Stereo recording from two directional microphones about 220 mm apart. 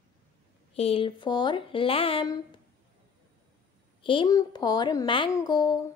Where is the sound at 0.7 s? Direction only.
25° left (ahead or behind).